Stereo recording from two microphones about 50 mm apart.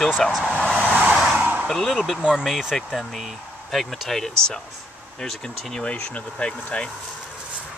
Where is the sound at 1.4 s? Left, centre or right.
Right.